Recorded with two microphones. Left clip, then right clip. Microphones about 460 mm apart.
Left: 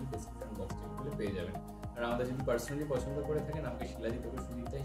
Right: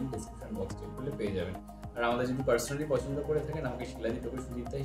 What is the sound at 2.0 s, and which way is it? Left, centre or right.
Speech, left.